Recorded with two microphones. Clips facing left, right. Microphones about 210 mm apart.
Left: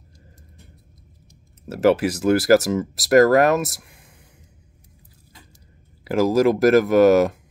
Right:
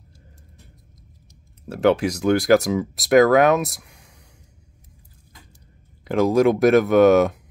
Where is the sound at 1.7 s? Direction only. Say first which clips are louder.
Left 1 dB; 5° left (ahead or behind).